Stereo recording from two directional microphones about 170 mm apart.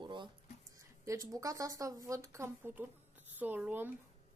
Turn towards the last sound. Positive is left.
turn(degrees=-10)  # may be behind; listen again after turning